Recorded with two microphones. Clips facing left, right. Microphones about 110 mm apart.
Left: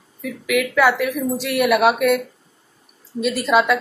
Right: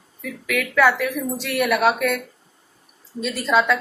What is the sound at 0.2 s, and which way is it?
A woman's voice, 5° left (ahead or behind).